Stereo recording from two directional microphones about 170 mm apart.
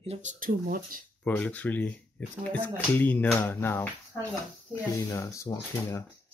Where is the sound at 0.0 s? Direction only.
40° right (ahead or behind).